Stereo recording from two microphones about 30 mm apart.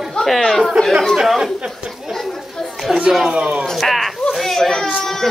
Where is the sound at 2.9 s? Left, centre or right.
Centre.